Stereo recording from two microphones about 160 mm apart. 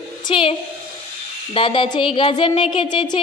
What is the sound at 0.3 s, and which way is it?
Speech, 35° left (ahead or behind).